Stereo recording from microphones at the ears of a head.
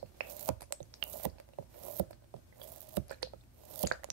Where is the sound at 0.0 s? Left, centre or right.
Right.